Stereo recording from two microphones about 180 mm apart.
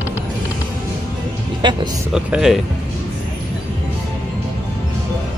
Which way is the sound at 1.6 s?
25° right (ahead or behind).